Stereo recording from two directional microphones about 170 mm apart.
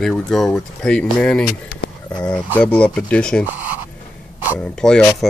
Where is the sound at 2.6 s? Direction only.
5° left (ahead or behind).